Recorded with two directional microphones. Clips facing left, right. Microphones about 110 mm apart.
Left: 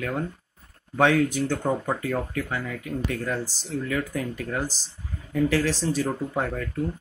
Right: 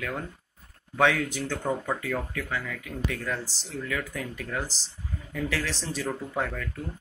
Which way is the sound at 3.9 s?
30° left (ahead or behind).